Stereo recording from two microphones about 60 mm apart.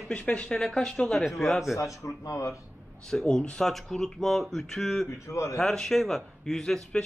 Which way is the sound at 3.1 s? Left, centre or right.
Centre.